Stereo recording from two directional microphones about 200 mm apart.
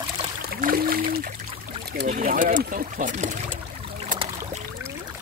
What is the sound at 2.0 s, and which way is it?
Speech, 40° right (ahead or behind).